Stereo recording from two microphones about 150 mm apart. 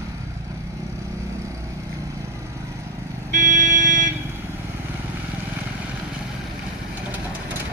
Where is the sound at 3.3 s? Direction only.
55° right (ahead or behind).